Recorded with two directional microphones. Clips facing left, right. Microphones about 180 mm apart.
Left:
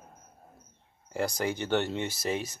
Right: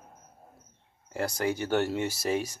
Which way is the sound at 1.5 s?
10° right (ahead or behind).